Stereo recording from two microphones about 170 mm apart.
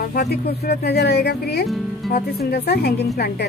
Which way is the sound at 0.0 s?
65° left (ahead or behind).